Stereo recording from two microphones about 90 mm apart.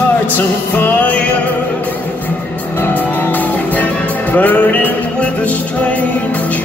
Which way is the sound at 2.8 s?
20° left (ahead or behind).